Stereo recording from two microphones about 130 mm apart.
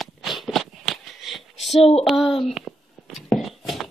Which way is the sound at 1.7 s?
50° left (ahead or behind).